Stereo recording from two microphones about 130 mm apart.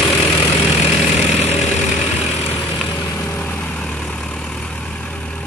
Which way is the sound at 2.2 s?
20° left (ahead or behind).